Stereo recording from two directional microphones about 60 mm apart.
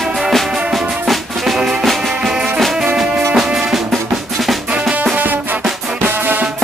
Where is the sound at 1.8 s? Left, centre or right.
Centre.